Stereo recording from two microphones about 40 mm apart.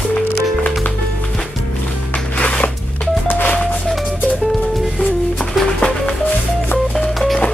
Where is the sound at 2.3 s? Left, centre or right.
Left.